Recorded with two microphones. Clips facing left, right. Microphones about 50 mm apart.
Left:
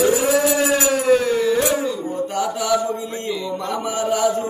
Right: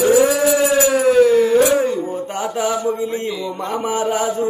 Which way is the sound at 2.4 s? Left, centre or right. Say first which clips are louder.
Even; right.